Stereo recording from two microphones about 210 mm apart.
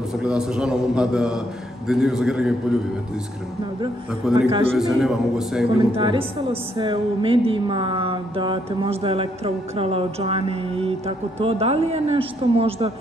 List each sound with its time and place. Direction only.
0.2 s a man's voice: 5° right (ahead or behind)
4.5 s mantra: 25° right (ahead or behind)
4.7 s a man's voice: centre (ahead or behind)
5.9 s mantra: 25° right (ahead or behind)